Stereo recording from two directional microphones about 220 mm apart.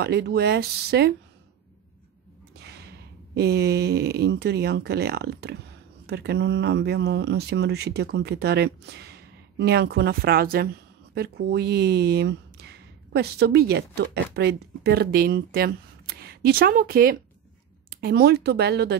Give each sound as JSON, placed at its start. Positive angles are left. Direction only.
{"t": 0.0, "sound": "speech", "side_deg": -50}
{"t": 2.6, "sound": "speech", "side_deg": -50}